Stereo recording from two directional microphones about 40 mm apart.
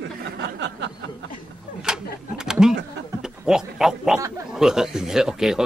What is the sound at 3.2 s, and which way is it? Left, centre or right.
Speech, centre.